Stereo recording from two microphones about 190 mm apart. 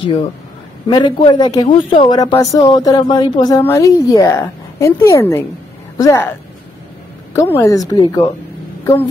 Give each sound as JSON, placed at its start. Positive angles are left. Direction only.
{"t": 0.8, "sound": "a man's voice", "side_deg": 25}
{"t": 7.3, "sound": "a woman's voice", "side_deg": 15}